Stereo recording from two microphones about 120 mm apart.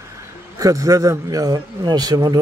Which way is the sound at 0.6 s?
30° right (ahead or behind).